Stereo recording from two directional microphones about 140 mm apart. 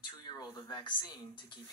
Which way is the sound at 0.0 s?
30° left (ahead or behind).